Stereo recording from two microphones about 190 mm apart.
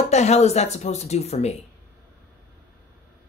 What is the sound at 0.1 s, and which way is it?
Speech, 35° left (ahead or behind).